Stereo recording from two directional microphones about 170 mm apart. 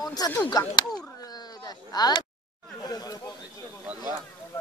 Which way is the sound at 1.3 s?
25° left (ahead or behind).